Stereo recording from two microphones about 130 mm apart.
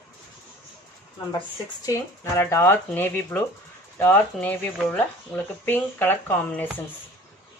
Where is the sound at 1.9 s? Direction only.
20° left (ahead or behind).